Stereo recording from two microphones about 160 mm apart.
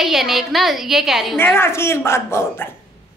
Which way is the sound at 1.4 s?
15° left (ahead or behind).